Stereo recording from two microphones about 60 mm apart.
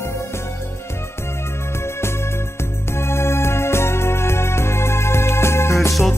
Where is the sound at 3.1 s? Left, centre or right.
Left.